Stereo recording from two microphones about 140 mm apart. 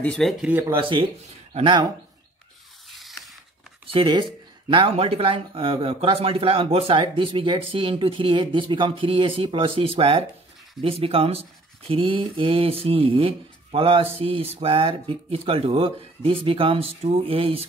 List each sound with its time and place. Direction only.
0.0 s speech: 5° left (ahead or behind)
0.5 s speech: 15° right (ahead or behind)
0.7 s speech: 35° right (ahead or behind)
2.9 s scissors: centre (ahead or behind)
3.8 s speech: 35° right (ahead or behind)